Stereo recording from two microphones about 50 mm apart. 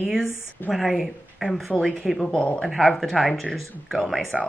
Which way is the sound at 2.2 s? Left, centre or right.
Centre.